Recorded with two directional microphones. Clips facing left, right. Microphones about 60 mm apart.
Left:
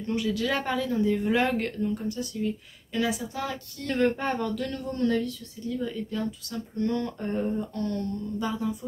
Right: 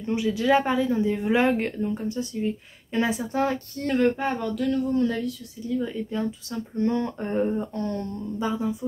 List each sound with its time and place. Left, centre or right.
0.0 s speech: centre; by 3.9 s right
3.9 s speech: centre
5.8 s speech: centre